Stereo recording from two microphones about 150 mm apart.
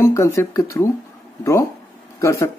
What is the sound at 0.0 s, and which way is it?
Speech, 20° left (ahead or behind).